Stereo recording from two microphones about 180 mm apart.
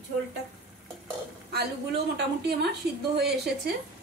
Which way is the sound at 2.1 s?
65° right (ahead or behind).